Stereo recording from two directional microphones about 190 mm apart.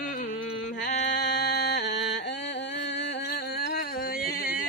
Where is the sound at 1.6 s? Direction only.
65° left (ahead or behind).